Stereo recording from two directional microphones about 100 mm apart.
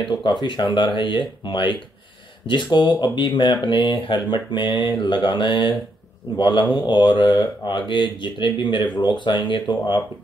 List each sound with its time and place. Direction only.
0.0 s speech: 50° left (ahead or behind)